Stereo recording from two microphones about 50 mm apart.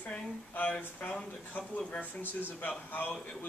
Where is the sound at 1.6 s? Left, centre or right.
Left.